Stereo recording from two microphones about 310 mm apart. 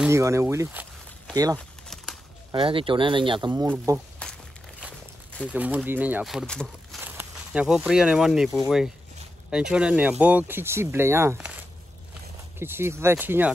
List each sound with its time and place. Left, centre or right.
0.0 s speech: centre
1.6 s a sound: centre
2.5 s speech: centre
4.2 s a sound: centre
5.4 s speech: centre
12.5 s speech: centre